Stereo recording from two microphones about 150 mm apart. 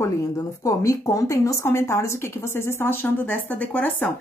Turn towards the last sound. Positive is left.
turn(degrees=10)  # may be behind; listen again after turning